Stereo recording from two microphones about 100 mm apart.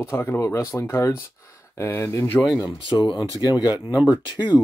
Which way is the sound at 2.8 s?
50° left (ahead or behind).